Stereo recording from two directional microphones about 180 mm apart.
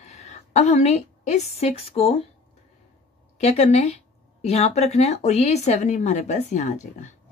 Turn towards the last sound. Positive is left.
turn(degrees=40)  # may be behind; listen again after turning